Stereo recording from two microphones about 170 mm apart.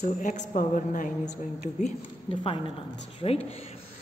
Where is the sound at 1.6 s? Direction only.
40° left (ahead or behind).